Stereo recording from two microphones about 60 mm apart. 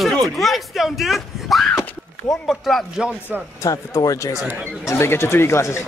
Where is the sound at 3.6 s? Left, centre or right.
Left.